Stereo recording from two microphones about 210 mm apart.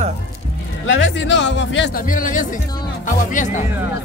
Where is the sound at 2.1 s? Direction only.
40° left (ahead or behind).